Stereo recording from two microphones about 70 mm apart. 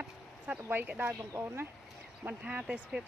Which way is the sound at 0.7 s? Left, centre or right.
Right.